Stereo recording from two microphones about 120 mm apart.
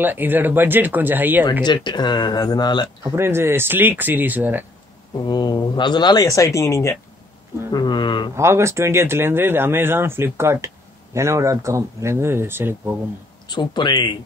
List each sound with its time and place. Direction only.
0.0 s speech: 15° right (ahead or behind)
1.6 s speech: 40° left (ahead or behind)
3.0 s speech: 20° right (ahead or behind)
5.2 s speech: 35° left (ahead or behind)
7.7 s speech: 40° left (ahead or behind)
8.4 s speech: 20° right (ahead or behind)
13.5 s speech: 40° left (ahead or behind)